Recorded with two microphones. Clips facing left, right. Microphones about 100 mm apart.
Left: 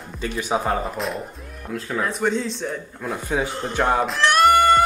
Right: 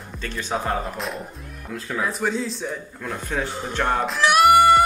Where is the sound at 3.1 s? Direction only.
10° left (ahead or behind); by 4.8 s 10° right (ahead or behind).